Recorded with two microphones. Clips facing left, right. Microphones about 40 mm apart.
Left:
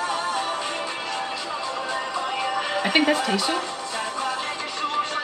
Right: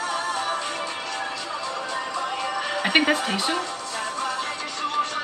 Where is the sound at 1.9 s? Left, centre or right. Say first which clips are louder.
Left 1 dB; centre.